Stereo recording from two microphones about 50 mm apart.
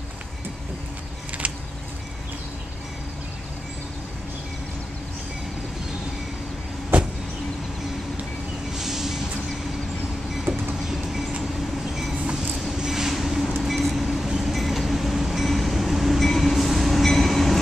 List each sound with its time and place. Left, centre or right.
1.4 s a sound: right
6.9 s vehicle: right
8.7 s vehicle: centre
12.7 s vehicle: centre
13.6 s train: centre